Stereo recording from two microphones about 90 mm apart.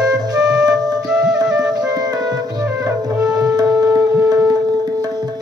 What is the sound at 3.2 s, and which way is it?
Tabla, 15° right (ahead or behind).